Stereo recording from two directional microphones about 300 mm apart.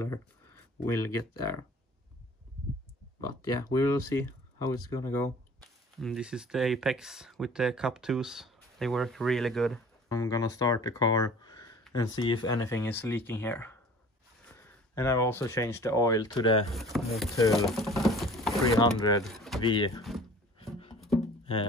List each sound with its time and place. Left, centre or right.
0.0 s speech: centre
3.2 s speech: centre
10.0 s speech: centre
15.0 s speech: centre
16.9 s speech: centre
17.5 s a sound: centre
18.8 s speech: centre
19.2 s speech: centre
19.6 s speech: centre
20.0 s speech: centre
20.9 s music: centre